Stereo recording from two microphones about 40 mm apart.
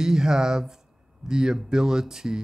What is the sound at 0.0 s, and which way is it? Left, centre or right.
Speech, centre.